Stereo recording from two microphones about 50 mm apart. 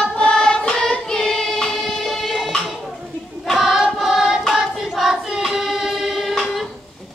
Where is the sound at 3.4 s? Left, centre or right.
Centre.